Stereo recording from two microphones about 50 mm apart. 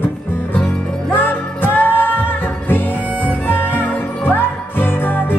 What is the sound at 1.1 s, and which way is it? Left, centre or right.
Music, left.